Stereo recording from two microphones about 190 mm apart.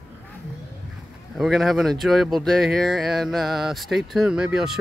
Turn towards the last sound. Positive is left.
turn(degrees=-5)  # may be behind; listen again after turning